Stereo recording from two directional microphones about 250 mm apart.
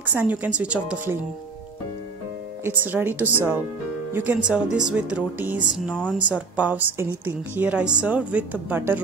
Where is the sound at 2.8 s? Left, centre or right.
Centre.